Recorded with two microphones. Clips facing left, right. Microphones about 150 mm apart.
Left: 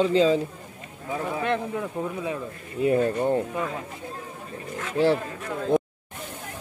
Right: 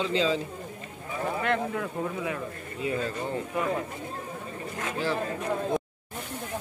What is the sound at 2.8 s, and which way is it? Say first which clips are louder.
Speech: left 9 dB; 55° left (ahead or behind).